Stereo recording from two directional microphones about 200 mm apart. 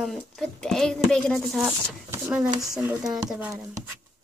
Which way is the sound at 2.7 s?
Centre (ahead or behind).